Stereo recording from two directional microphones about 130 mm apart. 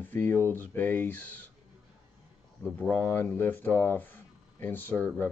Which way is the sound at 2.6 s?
10° left (ahead or behind).